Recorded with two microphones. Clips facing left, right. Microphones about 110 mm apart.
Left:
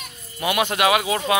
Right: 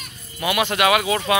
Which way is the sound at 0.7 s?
25° left (ahead or behind).